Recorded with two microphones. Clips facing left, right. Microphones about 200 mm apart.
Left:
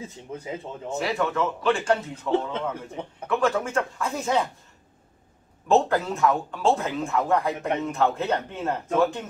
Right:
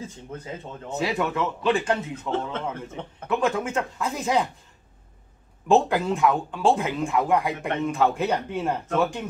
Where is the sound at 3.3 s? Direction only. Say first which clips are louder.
Even; 20° right (ahead or behind).